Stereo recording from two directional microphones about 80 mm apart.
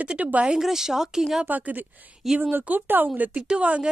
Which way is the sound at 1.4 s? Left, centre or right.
Centre.